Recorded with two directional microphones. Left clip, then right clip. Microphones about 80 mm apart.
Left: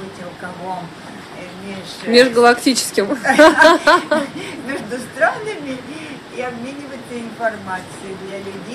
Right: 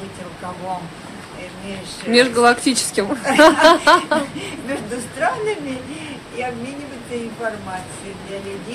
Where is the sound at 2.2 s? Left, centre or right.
Left.